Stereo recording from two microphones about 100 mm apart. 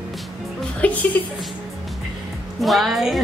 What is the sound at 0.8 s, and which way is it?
Music, 15° left (ahead or behind).